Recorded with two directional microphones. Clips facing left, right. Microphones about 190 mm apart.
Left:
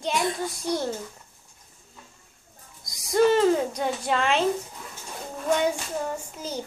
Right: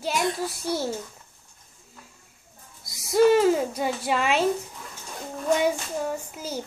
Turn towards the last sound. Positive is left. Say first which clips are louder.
# right 1 dB
turn(degrees=-10)  # may be behind; listen again after turning